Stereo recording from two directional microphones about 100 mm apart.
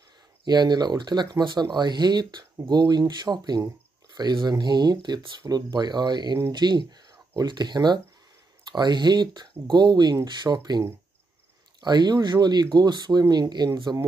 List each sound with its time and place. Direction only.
0.5 s speech: 45° right (ahead or behind)
11.8 s speech: 45° right (ahead or behind)